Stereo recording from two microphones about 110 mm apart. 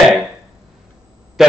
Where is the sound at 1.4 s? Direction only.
Centre (ahead or behind).